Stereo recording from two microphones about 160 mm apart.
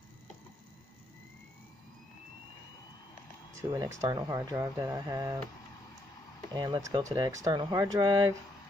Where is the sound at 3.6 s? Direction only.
20° right (ahead or behind).